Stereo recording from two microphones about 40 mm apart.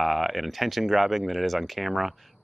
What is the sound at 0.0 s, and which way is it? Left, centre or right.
Speech, centre.